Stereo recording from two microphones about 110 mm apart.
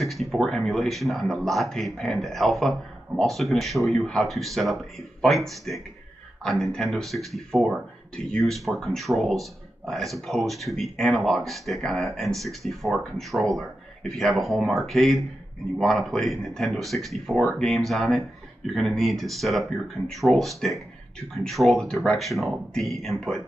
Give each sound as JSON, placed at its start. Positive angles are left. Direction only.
{"t": 0.0, "sound": "speech", "side_deg": 0}